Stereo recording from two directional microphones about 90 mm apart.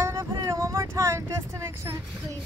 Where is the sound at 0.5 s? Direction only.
30° right (ahead or behind).